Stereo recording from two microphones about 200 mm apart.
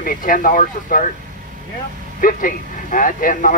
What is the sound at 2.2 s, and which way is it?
Speech, 45° left (ahead or behind).